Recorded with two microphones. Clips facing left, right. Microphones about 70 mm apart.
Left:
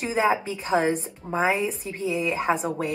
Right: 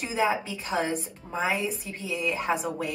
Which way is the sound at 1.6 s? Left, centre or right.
Left.